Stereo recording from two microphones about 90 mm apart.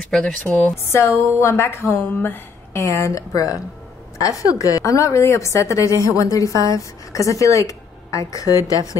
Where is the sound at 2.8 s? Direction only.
35° left (ahead or behind).